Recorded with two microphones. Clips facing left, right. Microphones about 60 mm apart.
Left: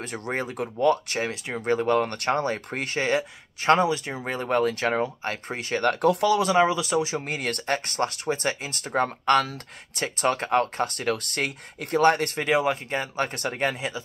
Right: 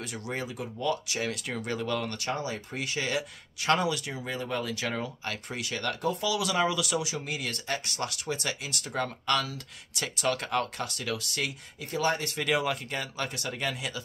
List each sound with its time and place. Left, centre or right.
0.0 s speech: left
12.4 s speech: left